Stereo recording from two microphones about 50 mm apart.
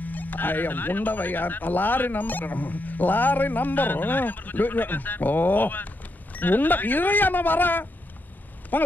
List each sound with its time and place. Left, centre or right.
0.0 s speech: left